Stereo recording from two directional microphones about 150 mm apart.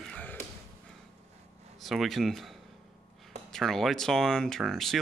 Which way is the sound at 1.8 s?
Centre (ahead or behind).